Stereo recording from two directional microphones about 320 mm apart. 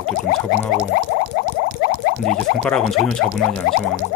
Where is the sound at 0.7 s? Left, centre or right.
Left.